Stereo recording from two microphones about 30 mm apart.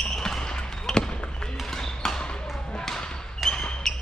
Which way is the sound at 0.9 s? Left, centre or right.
Left.